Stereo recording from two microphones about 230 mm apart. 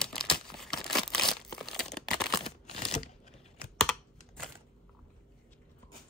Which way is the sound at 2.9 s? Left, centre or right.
Left.